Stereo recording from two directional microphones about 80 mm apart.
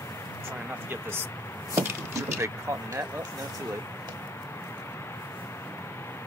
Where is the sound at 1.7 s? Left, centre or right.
Right.